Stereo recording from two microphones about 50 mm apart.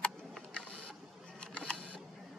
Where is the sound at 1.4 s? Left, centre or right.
Centre.